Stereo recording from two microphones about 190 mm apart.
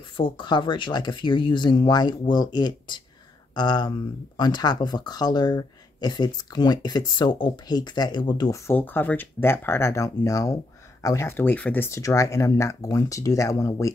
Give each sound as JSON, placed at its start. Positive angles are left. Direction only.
{"t": 0.2, "sound": "speech", "side_deg": 25}